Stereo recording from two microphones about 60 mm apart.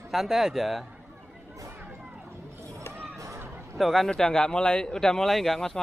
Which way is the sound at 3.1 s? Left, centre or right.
Right.